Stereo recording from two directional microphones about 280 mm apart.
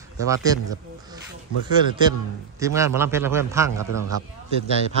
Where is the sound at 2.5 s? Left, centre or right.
Centre.